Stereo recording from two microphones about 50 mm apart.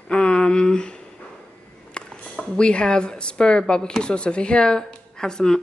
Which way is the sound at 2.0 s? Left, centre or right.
Centre.